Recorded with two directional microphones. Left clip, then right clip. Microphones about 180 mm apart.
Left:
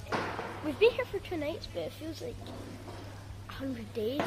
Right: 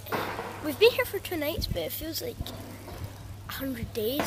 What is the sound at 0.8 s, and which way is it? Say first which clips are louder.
Speech: right 4 dB; 15° right (ahead or behind).